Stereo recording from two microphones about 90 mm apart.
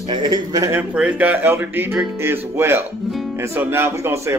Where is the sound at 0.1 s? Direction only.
60° right (ahead or behind).